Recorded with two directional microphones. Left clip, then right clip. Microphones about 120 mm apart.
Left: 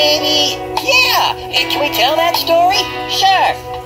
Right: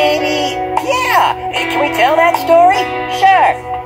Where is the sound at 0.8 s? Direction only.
25° right (ahead or behind).